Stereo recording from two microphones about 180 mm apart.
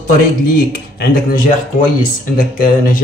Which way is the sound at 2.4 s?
50° left (ahead or behind).